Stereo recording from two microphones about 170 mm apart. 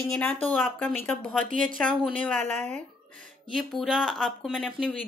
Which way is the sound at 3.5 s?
Centre (ahead or behind).